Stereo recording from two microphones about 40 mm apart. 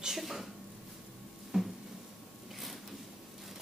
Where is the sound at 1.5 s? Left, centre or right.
Centre.